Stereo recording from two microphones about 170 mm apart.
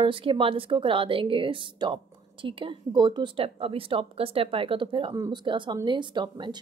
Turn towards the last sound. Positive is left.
turn(degrees=-25)  # may be behind; listen again after turning